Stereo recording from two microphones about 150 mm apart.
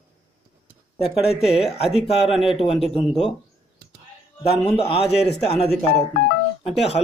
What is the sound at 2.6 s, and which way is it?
Speech, 40° left (ahead or behind).